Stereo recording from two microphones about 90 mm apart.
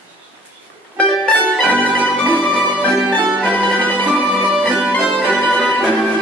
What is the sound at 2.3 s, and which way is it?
Music, 15° left (ahead or behind).